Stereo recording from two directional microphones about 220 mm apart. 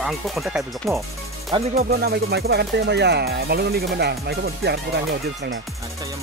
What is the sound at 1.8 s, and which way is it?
Music, 45° right (ahead or behind).